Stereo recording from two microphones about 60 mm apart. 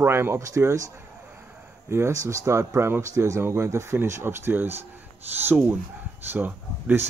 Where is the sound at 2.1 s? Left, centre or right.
Right.